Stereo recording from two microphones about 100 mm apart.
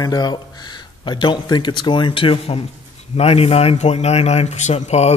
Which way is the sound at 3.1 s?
85° left.